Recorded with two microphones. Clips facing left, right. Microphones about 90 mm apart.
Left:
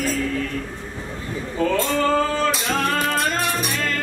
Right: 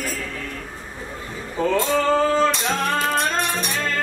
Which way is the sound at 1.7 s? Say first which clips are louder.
Right 2 dB; 15° right (ahead or behind).